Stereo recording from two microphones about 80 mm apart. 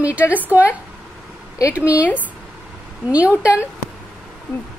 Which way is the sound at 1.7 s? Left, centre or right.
Centre.